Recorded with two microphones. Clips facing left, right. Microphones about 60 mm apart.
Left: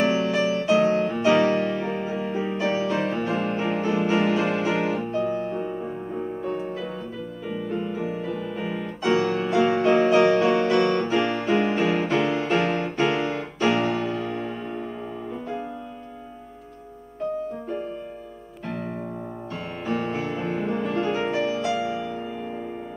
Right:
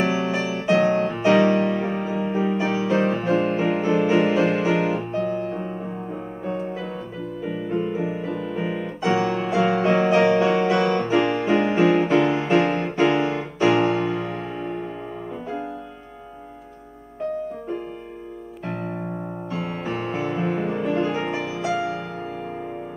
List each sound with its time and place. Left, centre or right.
0.0 s music: centre
19.5 s music: centre